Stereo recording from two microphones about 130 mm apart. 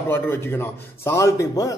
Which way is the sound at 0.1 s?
15° left (ahead or behind).